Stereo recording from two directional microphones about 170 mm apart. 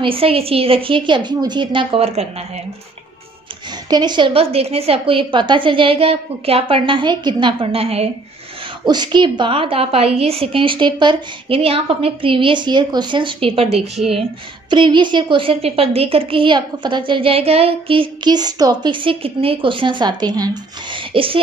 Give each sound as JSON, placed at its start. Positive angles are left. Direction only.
{"t": 0.0, "sound": "a woman's voice", "side_deg": -35}
{"t": 3.9, "sound": "a woman's voice", "side_deg": -25}
{"t": 8.8, "sound": "a woman's voice", "side_deg": -25}